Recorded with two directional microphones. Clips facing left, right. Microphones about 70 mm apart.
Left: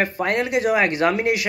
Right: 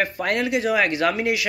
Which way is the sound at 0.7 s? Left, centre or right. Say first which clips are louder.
Left 2 dB; left.